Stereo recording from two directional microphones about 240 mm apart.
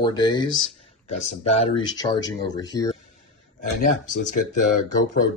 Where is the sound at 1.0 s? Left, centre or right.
Left.